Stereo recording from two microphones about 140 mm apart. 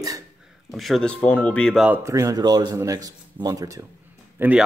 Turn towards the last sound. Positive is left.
turn(degrees=-15)  # may be behind; listen again after turning